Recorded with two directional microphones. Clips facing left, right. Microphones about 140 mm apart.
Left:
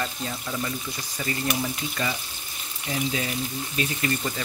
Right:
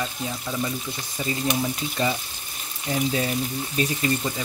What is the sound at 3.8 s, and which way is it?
Speech, 40° right (ahead or behind).